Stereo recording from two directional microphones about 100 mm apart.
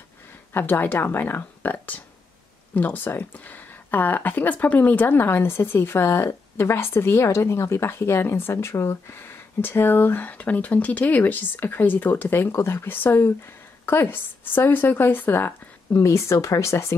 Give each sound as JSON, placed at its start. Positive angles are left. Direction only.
{"t": 0.5, "sound": "speech", "side_deg": 20}